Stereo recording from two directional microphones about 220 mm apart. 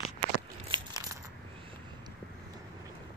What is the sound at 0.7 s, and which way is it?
Coin, 20° right (ahead or behind).